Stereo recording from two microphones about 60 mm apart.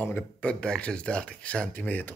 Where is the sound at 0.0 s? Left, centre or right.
Left.